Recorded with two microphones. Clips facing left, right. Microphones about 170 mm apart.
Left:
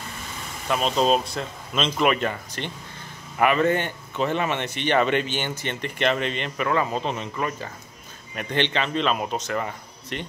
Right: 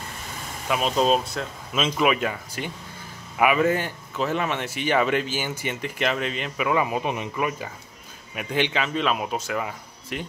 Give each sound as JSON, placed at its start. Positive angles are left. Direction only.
{"t": 0.7, "sound": "speech", "side_deg": -5}